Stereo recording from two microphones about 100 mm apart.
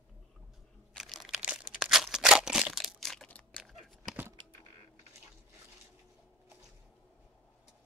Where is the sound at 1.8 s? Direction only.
Centre (ahead or behind).